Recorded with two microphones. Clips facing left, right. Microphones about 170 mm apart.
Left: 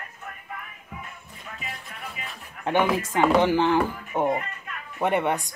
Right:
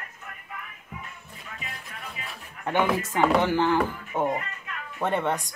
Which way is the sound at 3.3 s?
20° left (ahead or behind).